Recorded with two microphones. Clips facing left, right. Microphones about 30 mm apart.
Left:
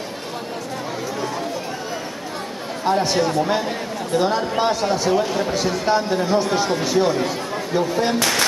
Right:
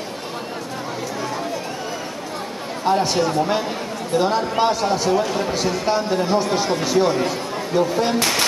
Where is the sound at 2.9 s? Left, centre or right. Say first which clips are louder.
Right 1 dB; centre.